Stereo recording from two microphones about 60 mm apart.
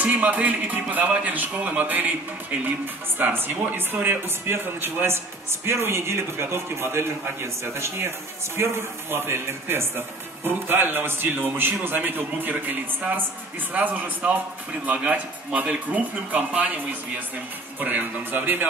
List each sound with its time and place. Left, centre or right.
0.0 s a man's voice: right
3.2 s a man's voice: right